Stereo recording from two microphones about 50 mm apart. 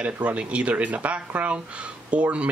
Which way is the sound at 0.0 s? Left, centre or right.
Right.